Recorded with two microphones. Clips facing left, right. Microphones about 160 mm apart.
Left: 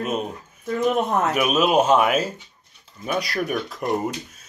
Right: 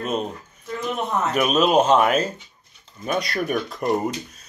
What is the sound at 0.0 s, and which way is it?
Speech, 5° left (ahead or behind).